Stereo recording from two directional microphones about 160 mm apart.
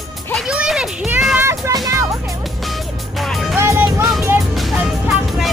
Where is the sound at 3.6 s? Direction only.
15° right (ahead or behind).